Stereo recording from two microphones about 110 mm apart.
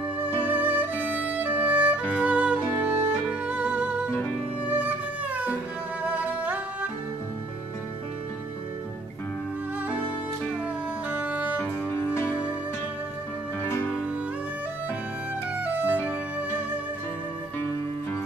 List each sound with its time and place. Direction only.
0.4 s music: 15° right (ahead or behind)
11.1 s music: 15° right (ahead or behind)
11.6 s music: 25° left (ahead or behind)
12.3 s music: 10° right (ahead or behind)
15.6 s music: 15° right (ahead or behind)